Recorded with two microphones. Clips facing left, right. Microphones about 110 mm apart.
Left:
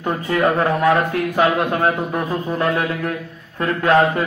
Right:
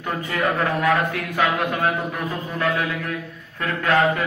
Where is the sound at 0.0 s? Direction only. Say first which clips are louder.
Left 5 dB; 30° left (ahead or behind).